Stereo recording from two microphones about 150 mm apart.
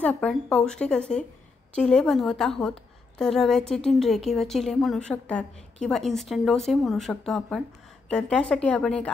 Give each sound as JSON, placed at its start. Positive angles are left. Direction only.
{"t": 0.0, "sound": "a woman's voice", "side_deg": 10}